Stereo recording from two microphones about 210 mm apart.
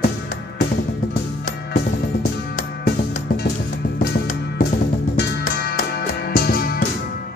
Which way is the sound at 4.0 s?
40° left (ahead or behind).